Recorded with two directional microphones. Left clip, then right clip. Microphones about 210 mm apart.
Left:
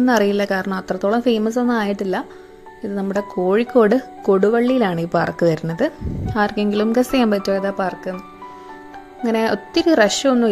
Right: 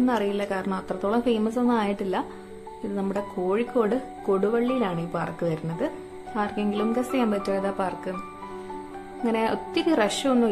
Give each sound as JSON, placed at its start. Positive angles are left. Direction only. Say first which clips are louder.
{"t": 0.0, "sound": "speech", "louder": "left 8 dB", "side_deg": 25}
{"t": 9.2, "sound": "speech", "louder": "left 6 dB", "side_deg": 20}